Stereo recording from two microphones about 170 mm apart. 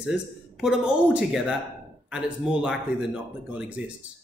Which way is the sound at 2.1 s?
5° right (ahead or behind).